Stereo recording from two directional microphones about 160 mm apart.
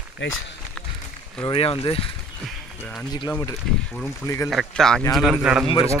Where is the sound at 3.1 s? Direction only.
25° left (ahead or behind).